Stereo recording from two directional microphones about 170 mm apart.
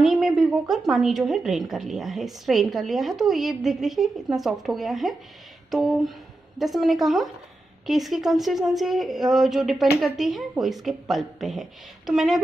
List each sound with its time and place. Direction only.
0.0 s a woman's voice: centre (ahead or behind)